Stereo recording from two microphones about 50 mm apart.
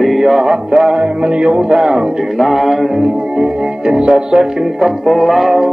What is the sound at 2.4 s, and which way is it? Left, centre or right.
Music, centre.